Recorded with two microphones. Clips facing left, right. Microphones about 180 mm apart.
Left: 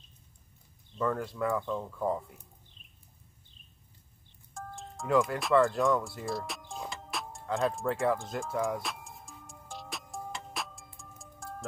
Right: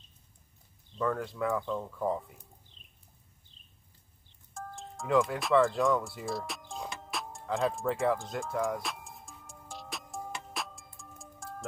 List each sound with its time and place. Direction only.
0.9 s speech: centre (ahead or behind)
4.6 s music: centre (ahead or behind)